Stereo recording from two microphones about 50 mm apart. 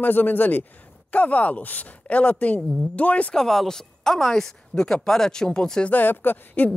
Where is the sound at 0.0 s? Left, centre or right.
Left.